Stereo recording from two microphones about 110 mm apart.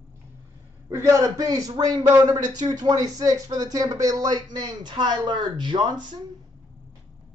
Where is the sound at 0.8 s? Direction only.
25° right (ahead or behind); by 6.2 s 45° right (ahead or behind).